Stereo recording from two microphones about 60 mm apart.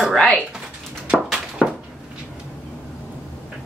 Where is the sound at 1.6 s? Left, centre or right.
Centre.